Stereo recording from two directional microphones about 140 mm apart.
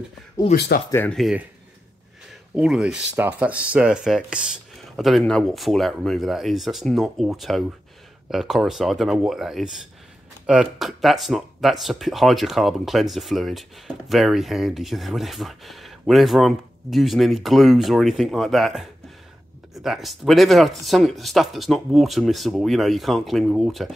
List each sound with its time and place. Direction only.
0.4 s speech: 20° left (ahead or behind)
1.1 s speech: centre (ahead or behind)
2.5 s speech: 5° right (ahead or behind)